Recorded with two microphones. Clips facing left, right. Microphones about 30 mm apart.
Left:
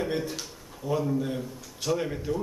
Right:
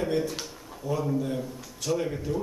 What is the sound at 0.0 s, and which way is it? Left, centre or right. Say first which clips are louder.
A man's voice: right 2 dB; centre.